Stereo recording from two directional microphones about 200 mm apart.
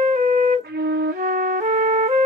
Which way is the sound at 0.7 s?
50° right (ahead or behind).